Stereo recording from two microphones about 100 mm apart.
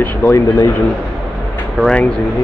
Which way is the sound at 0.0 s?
15° left (ahead or behind).